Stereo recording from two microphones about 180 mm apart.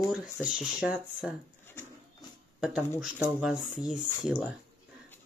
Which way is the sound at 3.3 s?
5° right (ahead or behind).